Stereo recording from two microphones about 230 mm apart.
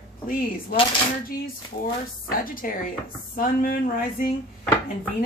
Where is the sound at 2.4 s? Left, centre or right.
Left.